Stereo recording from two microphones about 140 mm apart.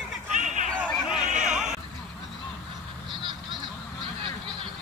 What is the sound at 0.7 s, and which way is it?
Chatter, 10° left (ahead or behind).